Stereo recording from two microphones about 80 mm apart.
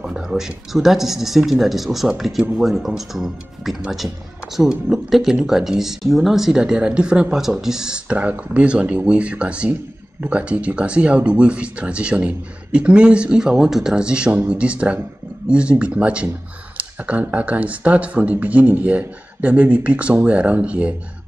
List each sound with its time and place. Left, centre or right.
0.0 s speech: centre